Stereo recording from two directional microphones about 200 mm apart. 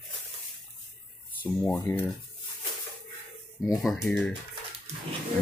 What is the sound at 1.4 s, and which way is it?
Speech, 5° left (ahead or behind).